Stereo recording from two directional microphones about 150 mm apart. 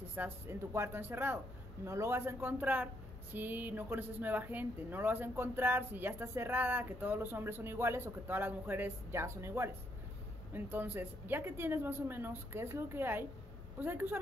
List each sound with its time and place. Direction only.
0.1 s speech: 15° right (ahead or behind)